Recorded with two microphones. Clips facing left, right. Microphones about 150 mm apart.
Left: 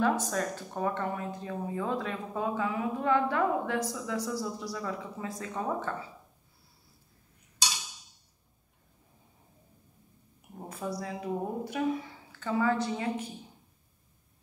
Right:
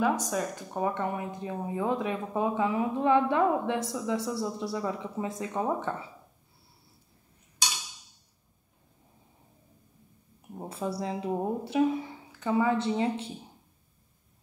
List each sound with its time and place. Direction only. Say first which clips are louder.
0.0 s speech: right 1 dB; 10° right (ahead or behind)
10.7 s speech: right 3 dB; 30° right (ahead or behind)